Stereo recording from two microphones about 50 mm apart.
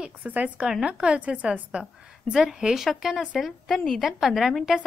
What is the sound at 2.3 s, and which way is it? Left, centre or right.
A woman's voice, centre.